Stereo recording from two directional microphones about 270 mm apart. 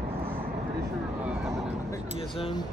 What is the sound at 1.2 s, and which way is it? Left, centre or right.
Vehicle, centre.